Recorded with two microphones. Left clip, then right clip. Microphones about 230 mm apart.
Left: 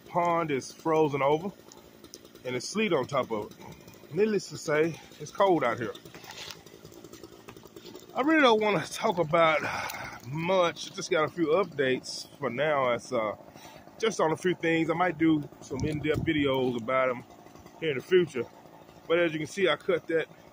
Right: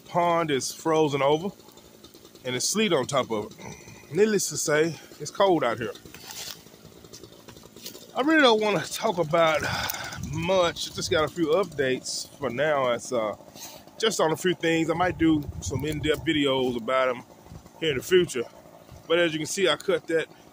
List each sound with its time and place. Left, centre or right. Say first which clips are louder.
0.1 s speech: right 4 dB; right
8.1 s speech: right 3 dB; centre